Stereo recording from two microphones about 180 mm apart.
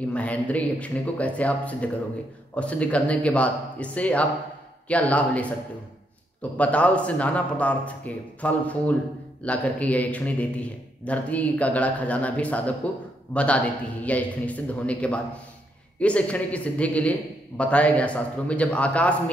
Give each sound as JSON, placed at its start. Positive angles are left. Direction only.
{"t": 0.1, "sound": "a man's voice", "side_deg": 5}
{"t": 6.5, "sound": "a man's voice", "side_deg": 5}